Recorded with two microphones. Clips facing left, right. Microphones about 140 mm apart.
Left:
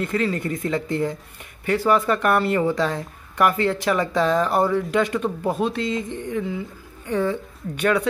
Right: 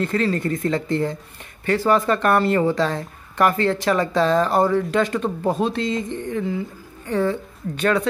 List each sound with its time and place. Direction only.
0.0 s speech: 10° left (ahead or behind)
5.6 s a sound: 5° left (ahead or behind)
7.1 s speech: 15° left (ahead or behind)